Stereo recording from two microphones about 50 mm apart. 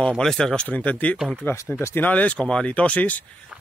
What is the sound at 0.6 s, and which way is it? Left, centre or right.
Speech, left.